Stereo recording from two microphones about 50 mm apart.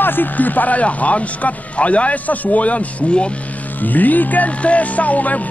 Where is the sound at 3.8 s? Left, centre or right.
Left.